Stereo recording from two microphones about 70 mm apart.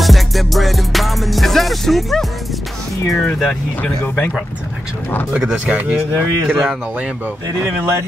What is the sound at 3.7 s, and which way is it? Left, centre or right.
Speech, left.